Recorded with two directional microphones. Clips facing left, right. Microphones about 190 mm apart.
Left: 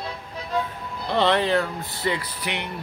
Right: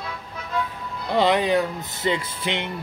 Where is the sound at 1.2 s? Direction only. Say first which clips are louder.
Right 1 dB; 15° right (ahead or behind).